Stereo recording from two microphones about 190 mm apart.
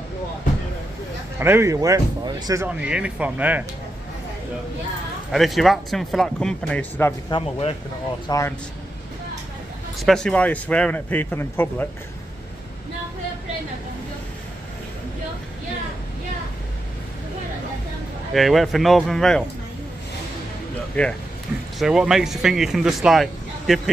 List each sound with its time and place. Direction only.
1.4 s speech: 15° right (ahead or behind)
2.8 s speech: 5° right (ahead or behind)
5.3 s speech: centre (ahead or behind)
7.2 s speech: 30° left (ahead or behind)
8.3 s a man's voice: 15° left (ahead or behind)
9.9 s a man's voice: centre (ahead or behind)
18.3 s speech: centre (ahead or behind)
21.0 s a man's voice: 10° left (ahead or behind)
21.7 s speech: 5° right (ahead or behind)